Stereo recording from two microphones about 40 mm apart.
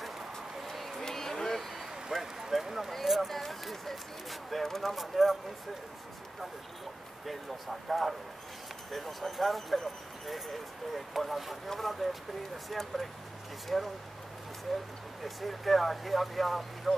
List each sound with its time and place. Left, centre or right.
0.7 s a sound: centre
4.6 s speech: centre
7.2 s speech: centre
15.2 s speech: centre